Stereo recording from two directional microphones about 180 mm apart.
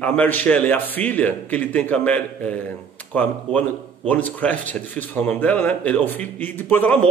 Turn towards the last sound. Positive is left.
turn(degrees=10)  # may be behind; listen again after turning